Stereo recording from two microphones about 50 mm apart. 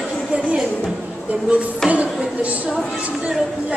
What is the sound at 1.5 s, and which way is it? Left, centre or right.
A woman's voice, right.